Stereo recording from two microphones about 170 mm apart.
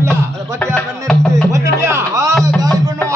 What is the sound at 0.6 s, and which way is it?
Music, 5° left (ahead or behind).